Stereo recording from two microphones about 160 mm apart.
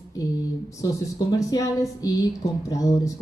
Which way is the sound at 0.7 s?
20° left (ahead or behind).